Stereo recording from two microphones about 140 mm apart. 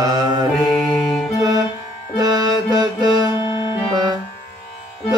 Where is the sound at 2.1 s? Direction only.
30° right (ahead or behind).